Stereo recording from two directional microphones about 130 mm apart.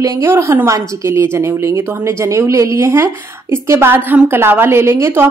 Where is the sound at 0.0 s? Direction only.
25° right (ahead or behind).